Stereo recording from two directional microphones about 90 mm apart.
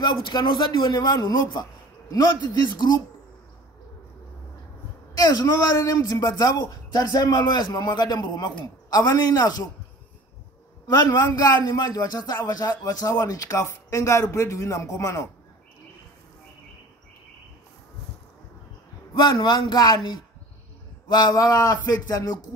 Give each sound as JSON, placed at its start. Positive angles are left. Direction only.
{"t": 0.0, "sound": "a man's voice", "side_deg": 55}
{"t": 5.1, "sound": "a man's voice", "side_deg": 40}
{"t": 11.0, "sound": "a man's voice", "side_deg": 45}
{"t": 19.1, "sound": "speech", "side_deg": 60}
{"t": 21.1, "sound": "a man's voice", "side_deg": 50}